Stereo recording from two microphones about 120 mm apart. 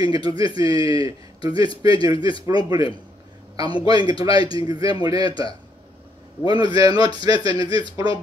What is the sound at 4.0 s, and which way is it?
Speech, 45° left (ahead or behind).